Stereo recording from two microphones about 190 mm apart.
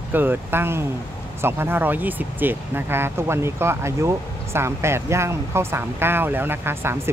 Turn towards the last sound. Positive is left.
turn(degrees=-10)  # may be behind; listen again after turning